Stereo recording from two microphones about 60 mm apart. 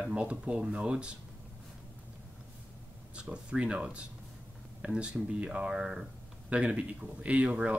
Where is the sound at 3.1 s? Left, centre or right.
Centre.